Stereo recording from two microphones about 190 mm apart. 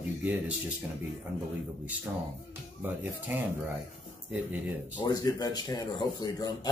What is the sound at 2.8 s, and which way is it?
Speech, 10° right (ahead or behind).